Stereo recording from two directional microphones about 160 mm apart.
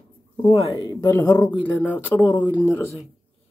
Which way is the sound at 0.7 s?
25° left (ahead or behind).